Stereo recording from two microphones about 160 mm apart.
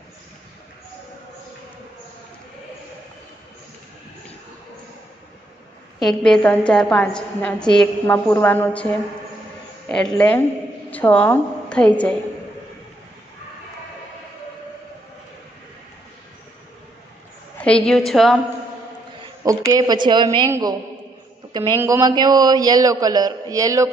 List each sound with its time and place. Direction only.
5.9 s a woman's voice: centre (ahead or behind)
9.8 s a woman's voice: 5° left (ahead or behind)
17.6 s a woman's voice: 5° left (ahead or behind)
19.4 s a man's voice: 20° right (ahead or behind)
20.4 s a man's voice: 20° right (ahead or behind)
21.7 s a man's voice: 15° right (ahead or behind)